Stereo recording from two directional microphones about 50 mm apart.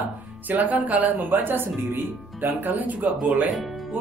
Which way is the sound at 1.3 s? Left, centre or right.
Right.